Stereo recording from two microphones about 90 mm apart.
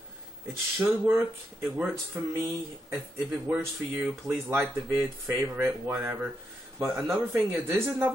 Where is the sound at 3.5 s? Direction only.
30° right (ahead or behind).